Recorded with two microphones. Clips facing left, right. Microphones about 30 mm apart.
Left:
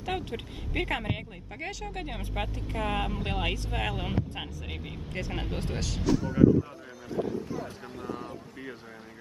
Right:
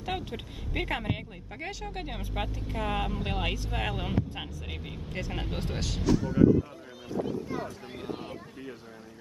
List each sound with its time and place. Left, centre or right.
0.0 s speech: centre
8.0 s speech: right